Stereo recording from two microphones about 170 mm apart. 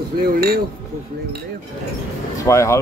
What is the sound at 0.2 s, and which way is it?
Speech, 60° right (ahead or behind).